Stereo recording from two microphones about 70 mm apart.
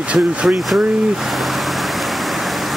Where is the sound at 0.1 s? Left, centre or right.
Centre.